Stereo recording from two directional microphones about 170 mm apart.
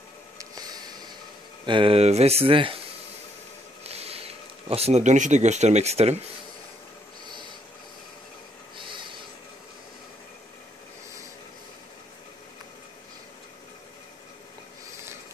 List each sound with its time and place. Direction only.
0.6 s a sound: 25° right (ahead or behind)
1.7 s speech: 30° right (ahead or behind)
3.8 s speech: 35° right (ahead or behind)
8.7 s snort: 30° right (ahead or behind)